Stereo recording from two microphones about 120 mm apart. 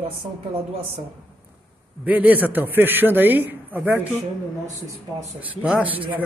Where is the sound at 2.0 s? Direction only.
15° right (ahead or behind).